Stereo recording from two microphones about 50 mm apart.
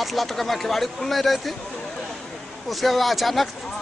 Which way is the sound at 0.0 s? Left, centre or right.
Centre.